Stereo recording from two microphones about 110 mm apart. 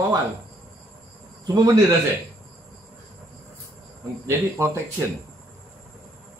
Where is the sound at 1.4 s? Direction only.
35° right (ahead or behind).